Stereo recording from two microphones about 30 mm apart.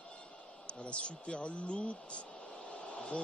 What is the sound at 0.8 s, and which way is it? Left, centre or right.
A man's voice, left.